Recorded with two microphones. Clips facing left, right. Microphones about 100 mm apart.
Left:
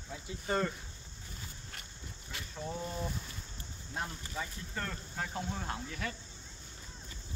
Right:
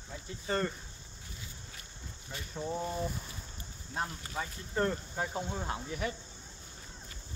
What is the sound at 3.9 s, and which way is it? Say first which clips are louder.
Speech: right 3 dB; 35° right (ahead or behind).